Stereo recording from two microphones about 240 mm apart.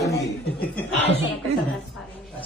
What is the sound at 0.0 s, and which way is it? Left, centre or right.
Chuckle, centre.